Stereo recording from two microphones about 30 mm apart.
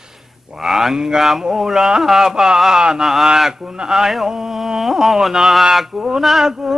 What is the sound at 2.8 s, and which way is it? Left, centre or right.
Music, right.